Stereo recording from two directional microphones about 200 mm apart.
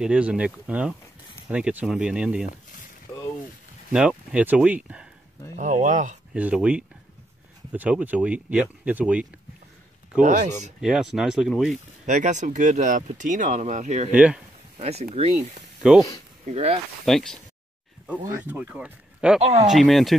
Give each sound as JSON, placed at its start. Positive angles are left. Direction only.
{"t": 0.0, "sound": "speech", "side_deg": -5}
{"t": 3.9, "sound": "speech", "side_deg": -5}
{"t": 5.6, "sound": "speech", "side_deg": -40}
{"t": 6.3, "sound": "speech", "side_deg": -5}
{"t": 10.2, "sound": "speech", "side_deg": -40}
{"t": 10.8, "sound": "speech", "side_deg": -5}
{"t": 12.1, "sound": "speech", "side_deg": -40}
{"t": 14.1, "sound": "speech", "side_deg": -5}
{"t": 14.8, "sound": "speech", "side_deg": -30}
{"t": 17.0, "sound": "speech", "side_deg": 0}
{"t": 18.4, "sound": "speech", "side_deg": -5}
{"t": 19.4, "sound": "speech", "side_deg": -30}
{"t": 19.7, "sound": "speech", "side_deg": 0}